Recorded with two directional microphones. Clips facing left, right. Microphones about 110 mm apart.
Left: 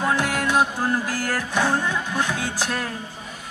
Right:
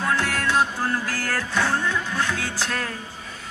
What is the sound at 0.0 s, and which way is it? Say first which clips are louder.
Music: left 2 dB; 15° left (ahead or behind).